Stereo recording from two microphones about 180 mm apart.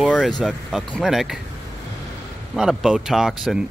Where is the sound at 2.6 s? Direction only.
5° right (ahead or behind).